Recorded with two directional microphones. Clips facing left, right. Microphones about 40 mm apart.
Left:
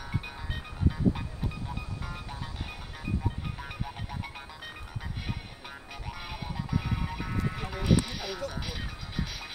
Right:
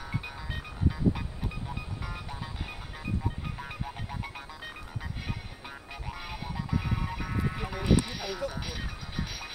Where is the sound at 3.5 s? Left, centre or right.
Centre.